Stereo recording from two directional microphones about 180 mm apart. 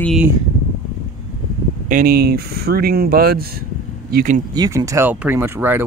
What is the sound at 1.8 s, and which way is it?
Speech, 50° right (ahead or behind).